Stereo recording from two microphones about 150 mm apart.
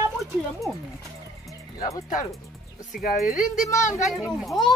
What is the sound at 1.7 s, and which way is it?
Speech, 25° left (ahead or behind).